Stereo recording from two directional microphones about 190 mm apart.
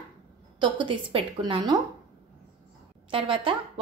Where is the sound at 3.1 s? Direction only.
25° right (ahead or behind).